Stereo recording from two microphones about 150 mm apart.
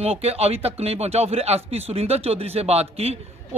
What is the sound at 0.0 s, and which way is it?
Speech, 45° right (ahead or behind).